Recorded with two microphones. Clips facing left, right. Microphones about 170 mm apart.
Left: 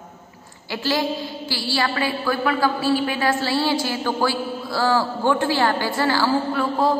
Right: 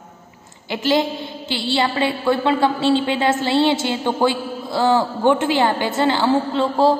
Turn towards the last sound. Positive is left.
turn(degrees=-25)  # may be behind; listen again after turning